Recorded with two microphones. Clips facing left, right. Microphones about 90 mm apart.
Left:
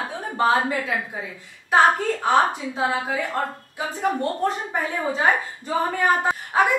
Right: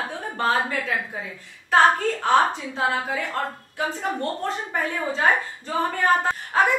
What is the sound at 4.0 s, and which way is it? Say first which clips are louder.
Speech: left 4 dB; 15° left (ahead or behind).